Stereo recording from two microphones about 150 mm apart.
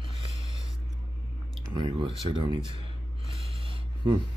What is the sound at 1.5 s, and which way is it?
Speech, 35° right (ahead or behind).